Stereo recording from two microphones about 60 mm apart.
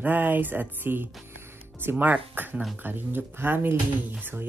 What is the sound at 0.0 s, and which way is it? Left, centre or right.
Speech, right.